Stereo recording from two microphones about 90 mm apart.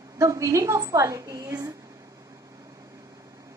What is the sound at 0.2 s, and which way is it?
A woman's voice, 35° right (ahead or behind).